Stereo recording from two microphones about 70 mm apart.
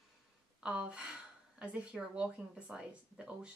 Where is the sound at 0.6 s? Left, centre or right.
Centre.